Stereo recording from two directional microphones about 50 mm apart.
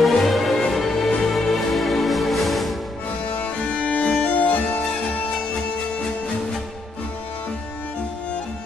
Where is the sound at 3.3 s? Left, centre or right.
Left.